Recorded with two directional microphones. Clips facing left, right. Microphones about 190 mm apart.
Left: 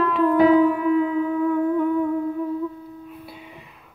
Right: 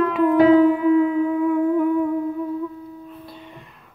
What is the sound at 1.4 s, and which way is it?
Music, 15° right (ahead or behind).